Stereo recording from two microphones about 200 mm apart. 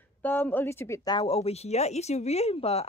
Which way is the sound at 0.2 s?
10° left (ahead or behind).